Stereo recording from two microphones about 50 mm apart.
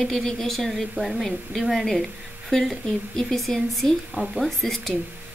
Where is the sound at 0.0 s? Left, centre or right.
Centre.